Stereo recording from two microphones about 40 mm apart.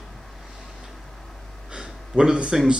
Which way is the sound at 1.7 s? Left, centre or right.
Centre.